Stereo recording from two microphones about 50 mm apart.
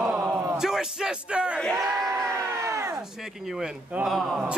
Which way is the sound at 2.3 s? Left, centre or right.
Right.